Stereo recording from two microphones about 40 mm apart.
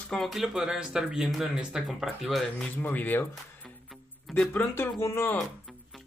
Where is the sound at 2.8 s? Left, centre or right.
Left.